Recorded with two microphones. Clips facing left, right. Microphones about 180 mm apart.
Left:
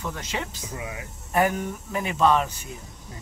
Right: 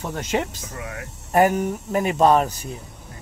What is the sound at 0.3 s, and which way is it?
Speech, 40° right (ahead or behind).